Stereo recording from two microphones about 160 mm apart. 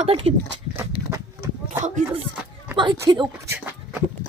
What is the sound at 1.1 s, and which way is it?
Horse, 15° right (ahead or behind).